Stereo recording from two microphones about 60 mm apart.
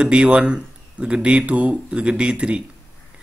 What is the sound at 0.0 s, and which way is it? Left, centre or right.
A man's voice, centre.